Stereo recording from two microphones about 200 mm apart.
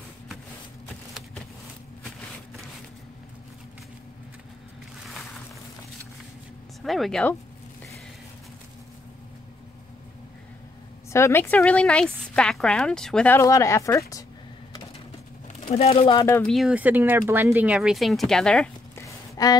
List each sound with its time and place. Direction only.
6.8 s speech: centre (ahead or behind)
11.1 s speech: 15° left (ahead or behind)
15.7 s speech: 30° left (ahead or behind)
16.3 s speech: 10° left (ahead or behind)
16.5 s speech: 5° right (ahead or behind)
19.0 s a sound: 20° left (ahead or behind)